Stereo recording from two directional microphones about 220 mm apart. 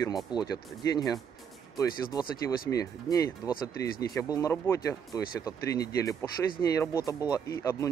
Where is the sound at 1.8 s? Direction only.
15° left (ahead or behind).